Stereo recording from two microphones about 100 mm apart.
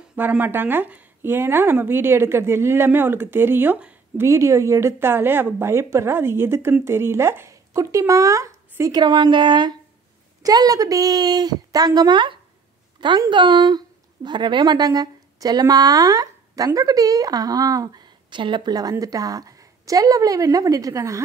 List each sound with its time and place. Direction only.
0.1 s a woman's voice: 20° right (ahead or behind)
4.3 s a woman's voice: 30° right (ahead or behind)
9.0 s a woman's voice: 45° right (ahead or behind)
18.3 s a woman's voice: 50° right (ahead or behind); by 21.2 s 35° right (ahead or behind)